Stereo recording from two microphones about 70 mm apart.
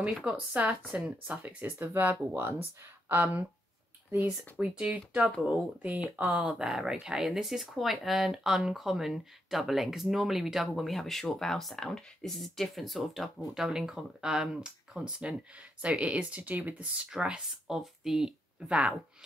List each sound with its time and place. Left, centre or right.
0.2 s speech: centre
1.6 s speech: right; by 5.9 s centre
5.9 s speech: right
6.4 s speech: centre